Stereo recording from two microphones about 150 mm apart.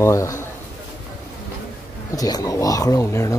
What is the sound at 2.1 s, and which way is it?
Speech, 25° left (ahead or behind).